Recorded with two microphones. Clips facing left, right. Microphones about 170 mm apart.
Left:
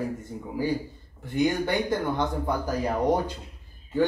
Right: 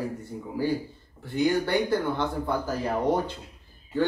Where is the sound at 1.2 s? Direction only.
20° left (ahead or behind).